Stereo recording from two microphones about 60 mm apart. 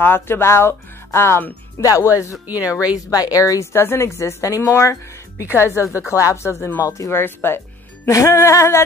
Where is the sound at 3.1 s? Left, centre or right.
Left.